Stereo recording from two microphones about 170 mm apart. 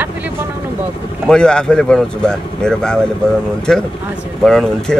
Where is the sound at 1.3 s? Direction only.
5° left (ahead or behind).